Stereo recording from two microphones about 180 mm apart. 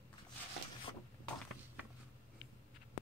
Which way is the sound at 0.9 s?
30° left (ahead or behind).